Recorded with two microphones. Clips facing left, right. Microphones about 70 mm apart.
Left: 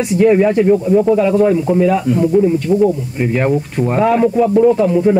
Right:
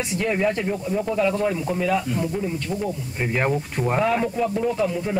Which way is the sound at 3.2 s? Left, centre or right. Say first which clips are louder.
Left 6 dB; centre.